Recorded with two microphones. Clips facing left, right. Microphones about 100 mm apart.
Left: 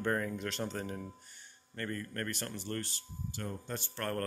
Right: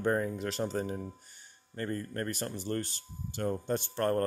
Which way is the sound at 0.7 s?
20° right (ahead or behind).